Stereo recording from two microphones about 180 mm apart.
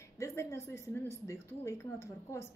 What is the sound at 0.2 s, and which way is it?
A woman's voice, 15° left (ahead or behind).